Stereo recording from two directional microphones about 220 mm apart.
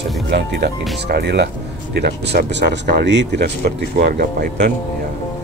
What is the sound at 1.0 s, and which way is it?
Speech, 50° right (ahead or behind).